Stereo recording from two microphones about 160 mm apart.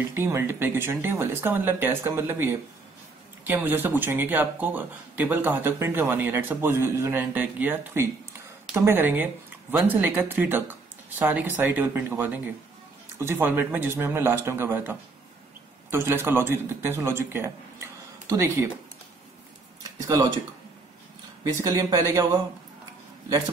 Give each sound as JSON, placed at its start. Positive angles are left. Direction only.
{"t": 0.1, "sound": "a man's voice", "side_deg": -15}
{"t": 20.1, "sound": "speech", "side_deg": -20}
{"t": 21.5, "sound": "speech", "side_deg": -20}